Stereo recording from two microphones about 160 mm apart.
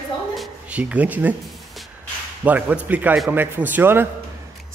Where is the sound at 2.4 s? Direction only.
10° right (ahead or behind).